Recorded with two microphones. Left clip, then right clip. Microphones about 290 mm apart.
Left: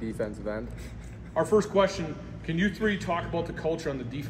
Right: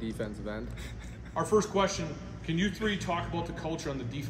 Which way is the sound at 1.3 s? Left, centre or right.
Right.